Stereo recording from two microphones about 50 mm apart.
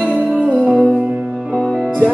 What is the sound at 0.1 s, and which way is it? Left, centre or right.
Music, right.